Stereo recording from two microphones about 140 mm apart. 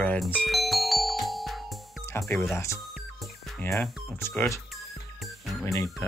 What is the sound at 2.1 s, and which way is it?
Speech, 15° left (ahead or behind).